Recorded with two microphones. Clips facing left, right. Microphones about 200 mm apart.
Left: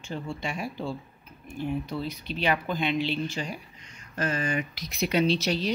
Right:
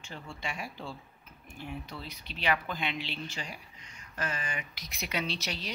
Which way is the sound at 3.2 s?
45° left (ahead or behind).